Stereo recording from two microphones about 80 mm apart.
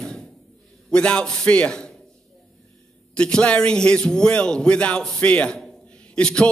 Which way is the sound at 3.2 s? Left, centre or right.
Centre.